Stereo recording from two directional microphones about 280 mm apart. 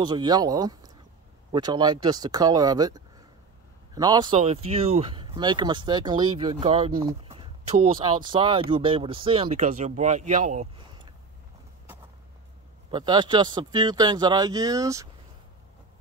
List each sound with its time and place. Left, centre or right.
0.0 s speech: centre
12.9 s speech: centre